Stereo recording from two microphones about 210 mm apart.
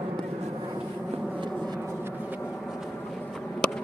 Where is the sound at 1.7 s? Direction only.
10° right (ahead or behind).